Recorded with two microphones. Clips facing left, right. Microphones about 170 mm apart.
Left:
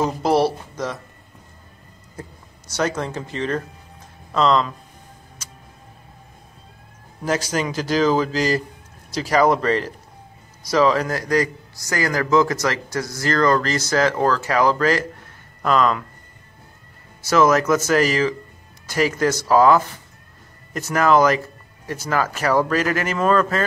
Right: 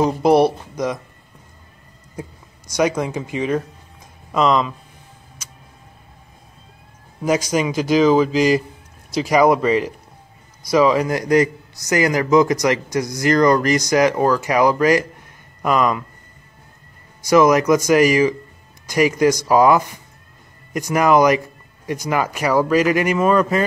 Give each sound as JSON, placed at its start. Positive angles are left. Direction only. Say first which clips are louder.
{"t": 0.0, "sound": "a man's voice", "louder": "right 4 dB", "side_deg": -15}
{"t": 2.7, "sound": "a man's voice", "louder": "right 4 dB", "side_deg": -10}
{"t": 7.5, "sound": "a man's voice", "louder": "right 5 dB", "side_deg": -10}
{"t": 17.2, "sound": "a man's voice", "louder": "right 3 dB", "side_deg": -15}